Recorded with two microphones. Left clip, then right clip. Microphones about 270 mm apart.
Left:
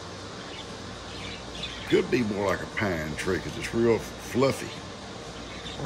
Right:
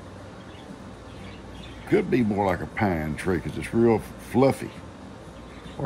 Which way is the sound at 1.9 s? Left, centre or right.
Right.